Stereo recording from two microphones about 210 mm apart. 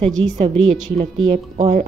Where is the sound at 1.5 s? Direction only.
30° right (ahead or behind).